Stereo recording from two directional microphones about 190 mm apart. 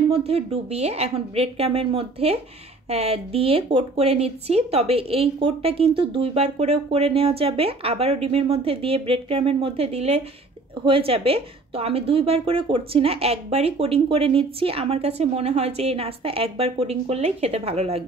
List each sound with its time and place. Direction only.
0.3 s speech: 35° right (ahead or behind)